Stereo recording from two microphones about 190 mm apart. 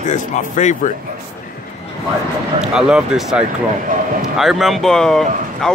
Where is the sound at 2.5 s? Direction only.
5° right (ahead or behind).